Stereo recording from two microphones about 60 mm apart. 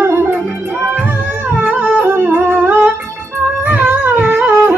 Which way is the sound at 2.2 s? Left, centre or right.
Right.